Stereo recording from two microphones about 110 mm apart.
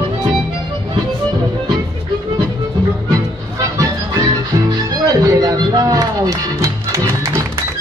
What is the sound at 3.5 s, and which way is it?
Music, 35° right (ahead or behind).